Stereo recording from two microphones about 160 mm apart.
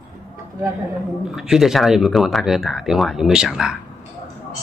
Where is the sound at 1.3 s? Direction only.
Centre (ahead or behind).